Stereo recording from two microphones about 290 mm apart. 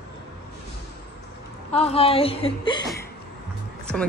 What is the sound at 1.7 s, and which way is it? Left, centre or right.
A woman's voice, left.